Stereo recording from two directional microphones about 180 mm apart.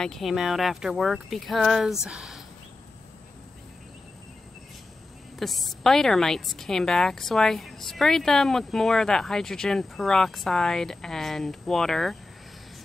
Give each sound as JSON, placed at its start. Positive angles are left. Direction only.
{"t": 0.0, "sound": "a woman's voice", "side_deg": 0}
{"t": 5.4, "sound": "a woman's voice", "side_deg": 0}